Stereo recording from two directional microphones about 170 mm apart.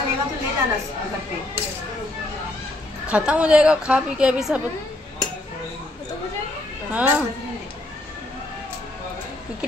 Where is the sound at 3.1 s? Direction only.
5° right (ahead or behind).